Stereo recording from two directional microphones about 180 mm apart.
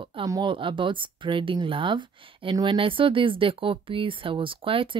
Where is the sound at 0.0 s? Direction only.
25° right (ahead or behind).